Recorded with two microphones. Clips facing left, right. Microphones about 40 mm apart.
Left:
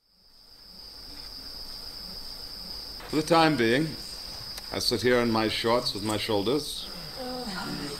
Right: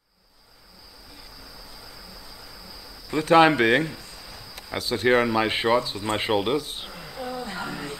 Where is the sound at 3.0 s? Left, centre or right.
Right.